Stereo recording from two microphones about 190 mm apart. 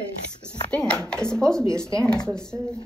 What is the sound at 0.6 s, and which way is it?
Speech, 5° left (ahead or behind).